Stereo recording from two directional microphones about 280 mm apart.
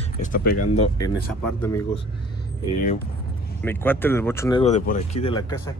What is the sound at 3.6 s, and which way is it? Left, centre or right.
Speech, centre.